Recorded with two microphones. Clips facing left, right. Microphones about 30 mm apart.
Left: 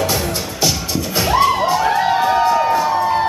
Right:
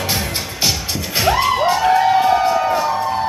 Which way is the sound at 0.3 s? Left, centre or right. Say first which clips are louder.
Left 1 dB; centre.